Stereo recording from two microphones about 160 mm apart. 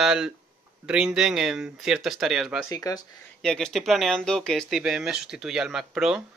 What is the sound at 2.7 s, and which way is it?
Speech, 20° left (ahead or behind).